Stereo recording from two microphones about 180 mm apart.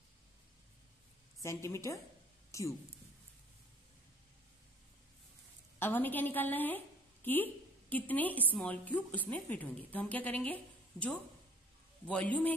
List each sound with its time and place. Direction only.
1.4 s a woman's voice: 15° left (ahead or behind)
5.8 s a woman's voice: 10° left (ahead or behind)